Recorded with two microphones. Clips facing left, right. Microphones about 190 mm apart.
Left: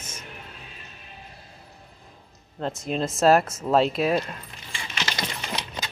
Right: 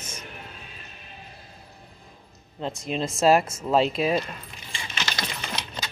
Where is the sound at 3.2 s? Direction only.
10° right (ahead or behind).